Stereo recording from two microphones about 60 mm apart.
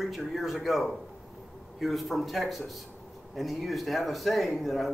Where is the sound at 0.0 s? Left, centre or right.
Centre.